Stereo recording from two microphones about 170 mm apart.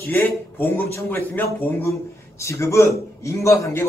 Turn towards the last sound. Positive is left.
turn(degrees=15)  # may be behind; listen again after turning